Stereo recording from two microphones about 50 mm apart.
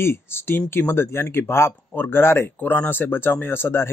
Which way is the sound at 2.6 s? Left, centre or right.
Left.